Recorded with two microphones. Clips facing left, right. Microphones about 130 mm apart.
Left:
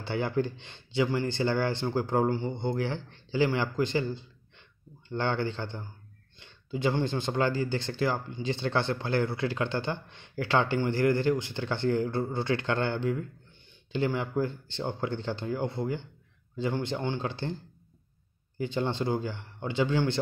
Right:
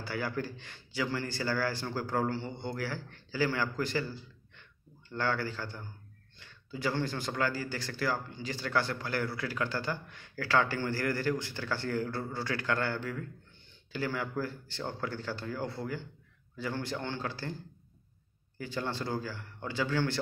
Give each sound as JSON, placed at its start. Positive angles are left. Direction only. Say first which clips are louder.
{"t": 0.0, "sound": "speech", "louder": "left 6 dB", "side_deg": 25}
{"t": 18.6, "sound": "speech", "louder": "left 6 dB", "side_deg": 20}